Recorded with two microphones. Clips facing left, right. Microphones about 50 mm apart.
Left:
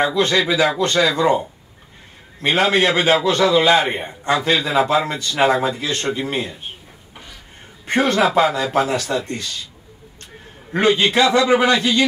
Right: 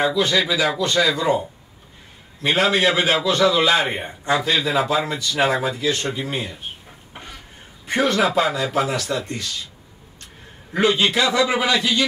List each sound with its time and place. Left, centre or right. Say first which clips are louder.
0.0 s a man's voice: left 2 dB; left
2.4 s a man's voice: left 2 dB; left
7.8 s a man's voice: left 2 dB; left
10.7 s a man's voice: left 2 dB; left